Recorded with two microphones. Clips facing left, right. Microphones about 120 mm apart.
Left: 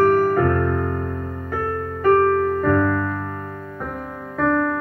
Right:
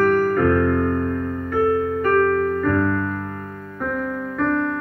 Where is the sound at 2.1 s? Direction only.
35° left (ahead or behind).